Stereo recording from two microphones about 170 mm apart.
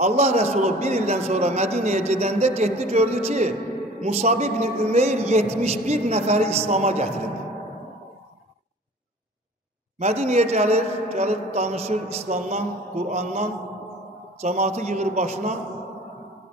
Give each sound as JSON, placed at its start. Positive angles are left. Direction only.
{"t": 0.0, "sound": "a man's voice", "side_deg": -40}
{"t": 9.9, "sound": "a man's voice", "side_deg": -40}